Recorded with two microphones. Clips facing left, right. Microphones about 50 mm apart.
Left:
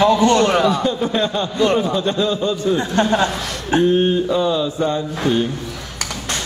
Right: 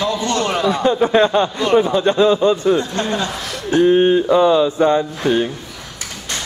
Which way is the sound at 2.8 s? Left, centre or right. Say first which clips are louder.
Left 4 dB; left.